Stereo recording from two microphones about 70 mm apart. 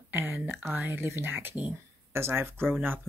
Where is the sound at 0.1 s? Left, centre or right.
Right.